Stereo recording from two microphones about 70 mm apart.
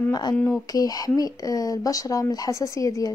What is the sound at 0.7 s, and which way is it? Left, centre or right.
Speech, left.